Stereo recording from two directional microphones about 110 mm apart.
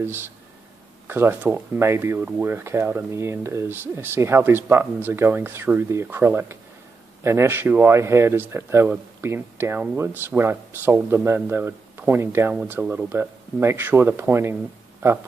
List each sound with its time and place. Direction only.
0.0 s speech: 20° right (ahead or behind)